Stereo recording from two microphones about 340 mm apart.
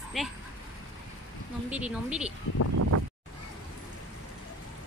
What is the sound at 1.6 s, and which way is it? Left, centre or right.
Speech, centre.